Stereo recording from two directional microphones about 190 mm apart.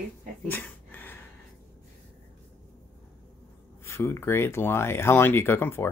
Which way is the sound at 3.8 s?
15° left (ahead or behind).